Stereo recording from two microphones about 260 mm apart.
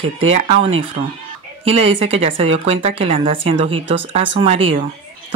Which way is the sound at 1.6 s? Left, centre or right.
Right.